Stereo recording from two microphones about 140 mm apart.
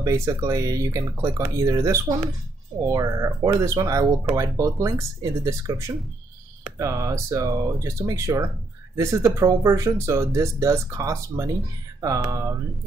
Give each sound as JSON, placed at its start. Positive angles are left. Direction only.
{"t": 0.0, "sound": "speech", "side_deg": -20}